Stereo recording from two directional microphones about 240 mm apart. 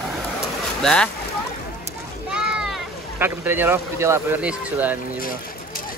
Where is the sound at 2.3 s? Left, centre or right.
Centre.